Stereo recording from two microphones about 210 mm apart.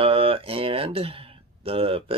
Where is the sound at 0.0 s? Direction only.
25° right (ahead or behind).